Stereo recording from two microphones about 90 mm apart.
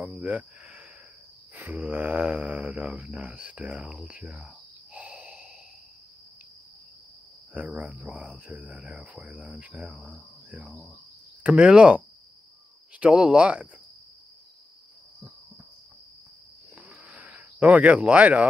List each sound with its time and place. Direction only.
0.0 s cricket: 15° right (ahead or behind)
1.5 s speech: 15° right (ahead or behind)
4.9 s snort: 15° right (ahead or behind)
7.5 s speech: 15° right (ahead or behind)
9.8 s cricket: 5° right (ahead or behind)
11.4 s speech: 10° right (ahead or behind)
13.0 s speech: 10° right (ahead or behind)
16.7 s a sound: 15° right (ahead or behind)